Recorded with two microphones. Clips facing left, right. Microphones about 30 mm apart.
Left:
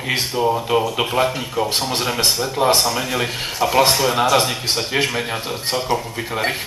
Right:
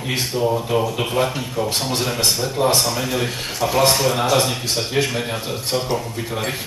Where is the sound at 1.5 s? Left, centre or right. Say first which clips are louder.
Left 1 dB; left.